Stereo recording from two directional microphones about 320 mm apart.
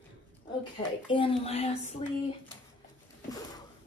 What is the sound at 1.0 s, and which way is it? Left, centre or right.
A woman's voice, centre.